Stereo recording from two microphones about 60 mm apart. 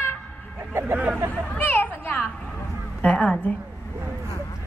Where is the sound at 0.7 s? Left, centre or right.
Right.